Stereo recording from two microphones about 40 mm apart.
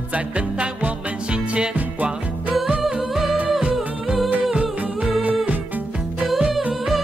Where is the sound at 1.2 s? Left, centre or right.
Right.